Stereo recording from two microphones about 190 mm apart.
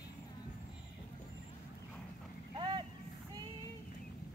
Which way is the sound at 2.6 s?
25° right (ahead or behind).